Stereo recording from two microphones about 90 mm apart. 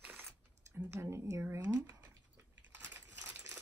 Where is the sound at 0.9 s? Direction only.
35° right (ahead or behind).